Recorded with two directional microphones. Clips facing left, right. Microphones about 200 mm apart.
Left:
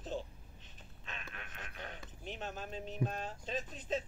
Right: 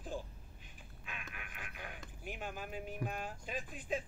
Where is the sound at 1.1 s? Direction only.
10° right (ahead or behind).